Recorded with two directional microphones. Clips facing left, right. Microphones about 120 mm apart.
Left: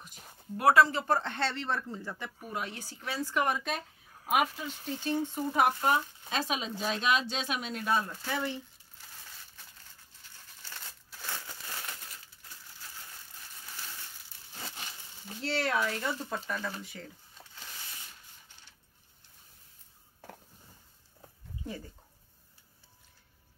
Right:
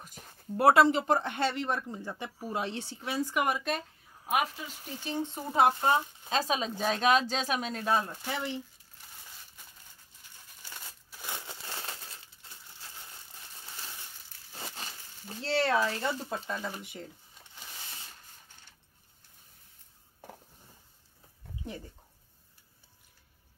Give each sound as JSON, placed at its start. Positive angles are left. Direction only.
{"t": 0.6, "sound": "a woman's voice", "side_deg": -25}
{"t": 5.0, "sound": "speech", "side_deg": -20}
{"t": 8.2, "sound": "speech", "side_deg": -20}
{"t": 10.6, "sound": "crumpling", "side_deg": -15}
{"t": 15.2, "sound": "speech", "side_deg": -30}